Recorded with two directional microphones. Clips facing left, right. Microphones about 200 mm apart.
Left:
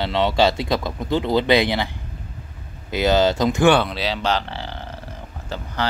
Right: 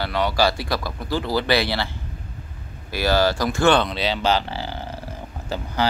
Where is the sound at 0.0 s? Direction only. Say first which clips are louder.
Left 3 dB; 25° left (ahead or behind).